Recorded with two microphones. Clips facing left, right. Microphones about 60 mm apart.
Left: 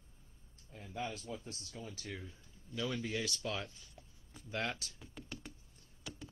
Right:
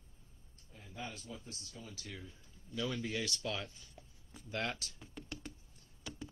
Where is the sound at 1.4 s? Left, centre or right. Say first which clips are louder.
Left 2 dB; left.